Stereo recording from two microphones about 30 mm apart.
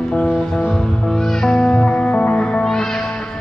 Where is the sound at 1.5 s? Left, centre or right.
Left.